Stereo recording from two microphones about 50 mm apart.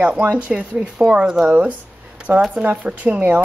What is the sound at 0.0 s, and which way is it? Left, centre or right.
Speech, right.